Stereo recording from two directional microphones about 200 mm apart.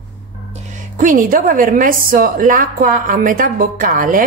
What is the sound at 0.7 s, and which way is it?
A woman's voice, 40° right (ahead or behind).